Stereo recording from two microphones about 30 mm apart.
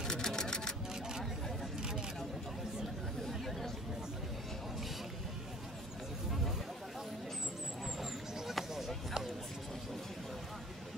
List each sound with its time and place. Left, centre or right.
0.0 s music: centre
3.3 s chatter: centre
8.0 s a sound: centre